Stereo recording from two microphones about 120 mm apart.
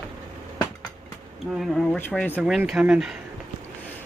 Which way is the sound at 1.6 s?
Centre (ahead or behind).